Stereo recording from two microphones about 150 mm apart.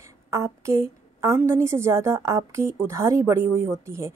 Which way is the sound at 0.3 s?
20° right (ahead or behind).